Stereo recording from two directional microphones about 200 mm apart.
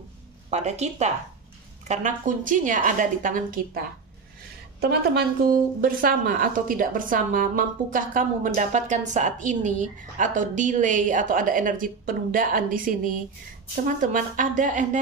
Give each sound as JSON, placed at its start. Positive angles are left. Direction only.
{"t": 0.5, "sound": "a woman's voice", "side_deg": -35}